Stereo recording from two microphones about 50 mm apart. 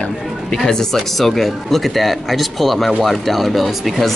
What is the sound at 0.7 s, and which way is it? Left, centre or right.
Speech, centre.